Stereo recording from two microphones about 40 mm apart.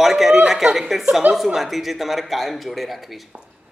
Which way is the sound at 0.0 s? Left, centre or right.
Centre.